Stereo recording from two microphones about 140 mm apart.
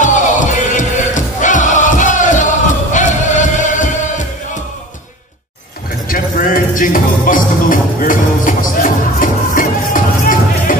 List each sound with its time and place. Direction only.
0.0 s music: 65° left (ahead or behind)
6.0 s music: 80° left